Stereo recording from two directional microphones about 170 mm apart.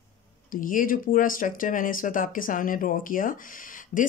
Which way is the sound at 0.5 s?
55° left (ahead or behind).